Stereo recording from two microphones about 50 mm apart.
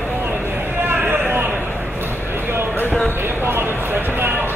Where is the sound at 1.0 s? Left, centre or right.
Right.